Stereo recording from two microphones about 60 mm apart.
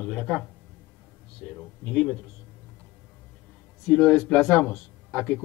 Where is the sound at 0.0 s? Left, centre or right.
Centre.